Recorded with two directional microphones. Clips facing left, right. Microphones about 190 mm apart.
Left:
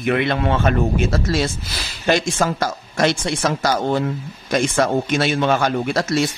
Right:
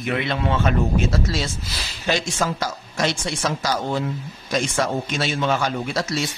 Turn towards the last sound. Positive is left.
turn(degrees=55)  # may be behind; listen again after turning